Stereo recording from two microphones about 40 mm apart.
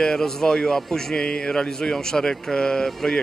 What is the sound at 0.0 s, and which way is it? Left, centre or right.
A man's voice, centre.